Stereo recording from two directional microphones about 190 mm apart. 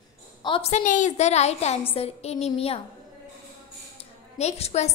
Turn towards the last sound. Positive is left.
turn(degrees=35)  # may be behind; listen again after turning